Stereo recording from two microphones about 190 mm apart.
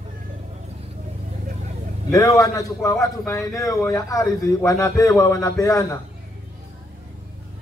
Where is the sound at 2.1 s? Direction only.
15° left (ahead or behind).